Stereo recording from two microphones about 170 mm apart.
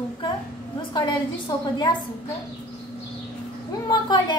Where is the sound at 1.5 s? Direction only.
25° left (ahead or behind).